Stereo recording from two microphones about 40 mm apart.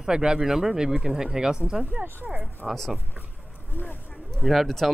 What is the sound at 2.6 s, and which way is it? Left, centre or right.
Speech, centre.